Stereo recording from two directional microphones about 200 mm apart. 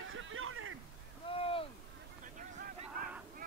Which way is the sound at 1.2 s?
25° left (ahead or behind).